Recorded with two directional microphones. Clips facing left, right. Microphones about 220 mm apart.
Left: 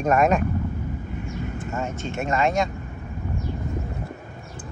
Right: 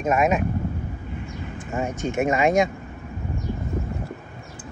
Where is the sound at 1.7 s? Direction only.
15° right (ahead or behind).